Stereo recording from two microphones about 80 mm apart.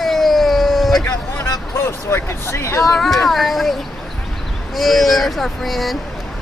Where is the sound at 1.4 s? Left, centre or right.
Left.